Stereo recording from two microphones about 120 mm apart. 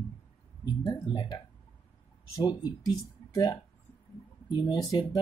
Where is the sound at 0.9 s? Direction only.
40° left (ahead or behind).